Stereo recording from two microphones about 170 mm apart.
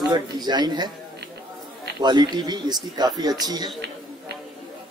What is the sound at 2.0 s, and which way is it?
Speech, 25° right (ahead or behind).